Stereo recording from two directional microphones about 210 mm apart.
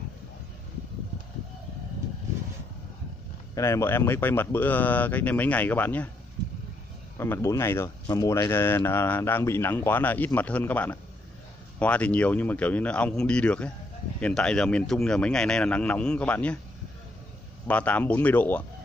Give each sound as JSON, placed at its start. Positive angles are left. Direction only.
{"t": 3.5, "sound": "speech", "side_deg": 15}
{"t": 7.2, "sound": "speech", "side_deg": 10}
{"t": 17.6, "sound": "speech", "side_deg": 5}